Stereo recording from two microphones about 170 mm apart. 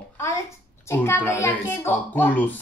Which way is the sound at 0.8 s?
15° left (ahead or behind).